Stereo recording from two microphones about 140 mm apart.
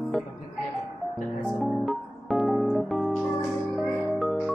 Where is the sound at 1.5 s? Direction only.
Centre (ahead or behind).